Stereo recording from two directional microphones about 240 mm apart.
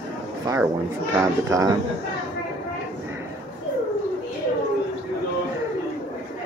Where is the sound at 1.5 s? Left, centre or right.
Centre.